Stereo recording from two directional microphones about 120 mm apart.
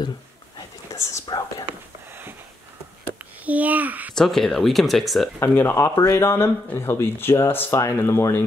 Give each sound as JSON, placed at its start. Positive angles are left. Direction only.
{"t": 0.6, "sound": "a sound", "side_deg": 25}
{"t": 1.2, "sound": "whispering", "side_deg": 35}
{"t": 3.4, "sound": "a child's voice", "side_deg": -15}
{"t": 4.1, "sound": "speech", "side_deg": 0}
{"t": 5.4, "sound": "speech", "side_deg": 20}